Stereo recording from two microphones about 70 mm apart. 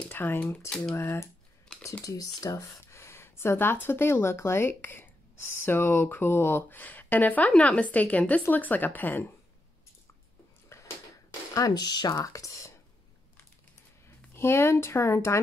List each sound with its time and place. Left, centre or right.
0.1 s speech: left
0.7 s speech: centre
0.9 s speech: left
2.0 s speech: left
2.8 s speech: left
10.7 s a sound: left
11.7 s speech: left
12.3 s a sound: left
14.3 s speech: left